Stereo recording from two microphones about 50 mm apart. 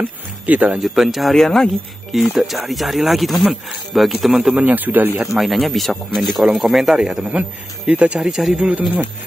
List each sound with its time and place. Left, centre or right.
0.0 s speech: right
0.7 s speech: centre
4.6 s speech: right
5.2 s speech: centre
7.2 s speech: right
8.2 s speech: centre
8.6 s speech: right